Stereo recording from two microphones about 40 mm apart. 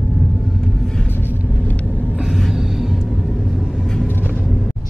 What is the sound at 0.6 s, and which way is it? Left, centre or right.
Vehicle, centre.